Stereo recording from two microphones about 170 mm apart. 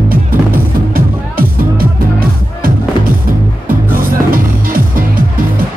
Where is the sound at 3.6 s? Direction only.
55° right (ahead or behind).